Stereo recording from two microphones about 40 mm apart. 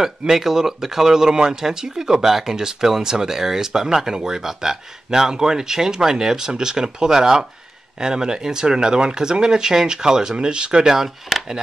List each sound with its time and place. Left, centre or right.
0.3 s speech: centre